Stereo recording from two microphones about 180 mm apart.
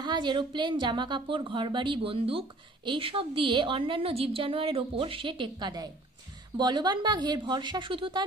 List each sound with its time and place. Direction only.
0.0 s a woman's voice: 25° right (ahead or behind)